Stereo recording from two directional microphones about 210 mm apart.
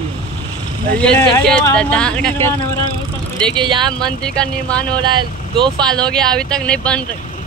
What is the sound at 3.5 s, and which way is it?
Speech, 20° right (ahead or behind).